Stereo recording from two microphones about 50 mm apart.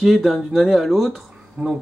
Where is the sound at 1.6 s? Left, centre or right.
Right.